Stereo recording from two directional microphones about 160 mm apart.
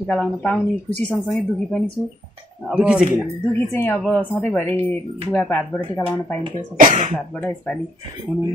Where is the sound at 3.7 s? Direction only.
10° left (ahead or behind).